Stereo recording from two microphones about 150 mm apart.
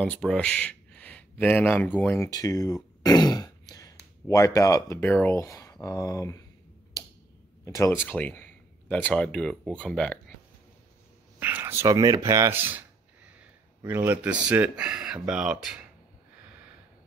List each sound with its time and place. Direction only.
0.0 s speech: 5° left (ahead or behind)
7.6 s speech: 20° left (ahead or behind)
11.3 s speech: 15° right (ahead or behind)